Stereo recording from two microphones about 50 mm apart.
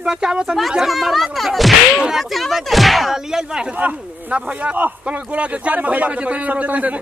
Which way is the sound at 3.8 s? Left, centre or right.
Right.